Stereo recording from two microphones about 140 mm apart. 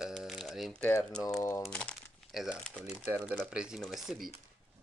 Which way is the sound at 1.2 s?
25° left (ahead or behind).